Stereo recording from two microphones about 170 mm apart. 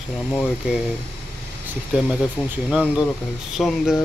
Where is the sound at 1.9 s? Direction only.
5° right (ahead or behind).